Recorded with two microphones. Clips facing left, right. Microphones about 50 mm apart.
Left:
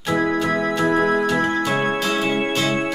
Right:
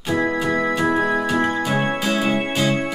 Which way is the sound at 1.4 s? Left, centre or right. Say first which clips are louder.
Left 1 dB; centre.